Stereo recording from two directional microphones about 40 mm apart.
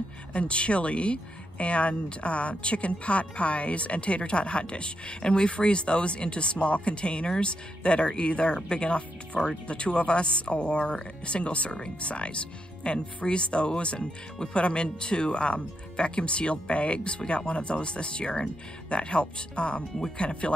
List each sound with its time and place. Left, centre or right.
0.3 s speech: left